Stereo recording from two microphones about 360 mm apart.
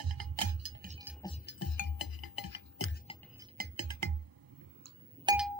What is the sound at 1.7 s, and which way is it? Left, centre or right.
Music, left.